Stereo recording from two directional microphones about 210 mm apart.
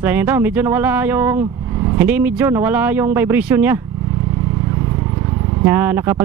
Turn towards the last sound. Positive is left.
turn(degrees=-10)  # may be behind; listen again after turning